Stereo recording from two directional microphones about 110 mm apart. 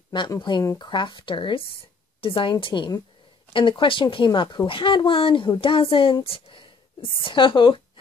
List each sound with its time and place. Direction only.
0.4 s a woman's voice: 45° left (ahead or behind)